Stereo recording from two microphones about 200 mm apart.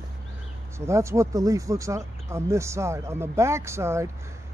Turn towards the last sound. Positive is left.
turn(degrees=-15)  # may be behind; listen again after turning